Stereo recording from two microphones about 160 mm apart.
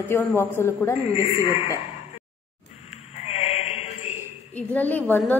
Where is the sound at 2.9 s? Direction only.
40° left (ahead or behind).